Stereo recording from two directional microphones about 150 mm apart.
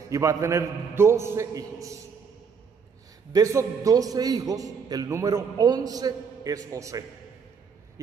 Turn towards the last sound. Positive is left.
turn(degrees=-20)  # may be behind; listen again after turning